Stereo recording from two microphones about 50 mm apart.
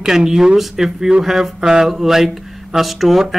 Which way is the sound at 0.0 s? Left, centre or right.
Centre.